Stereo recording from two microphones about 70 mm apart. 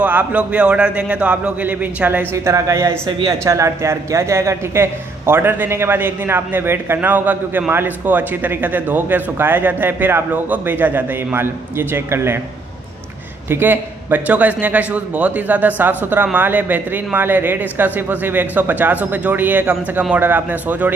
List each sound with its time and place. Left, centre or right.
0.0 s a man's voice: right
2.3 s a man's voice: right
13.5 s a man's voice: right